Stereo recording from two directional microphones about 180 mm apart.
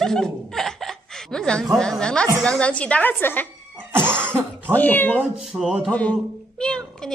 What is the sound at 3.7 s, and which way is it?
Cough, 10° right (ahead or behind).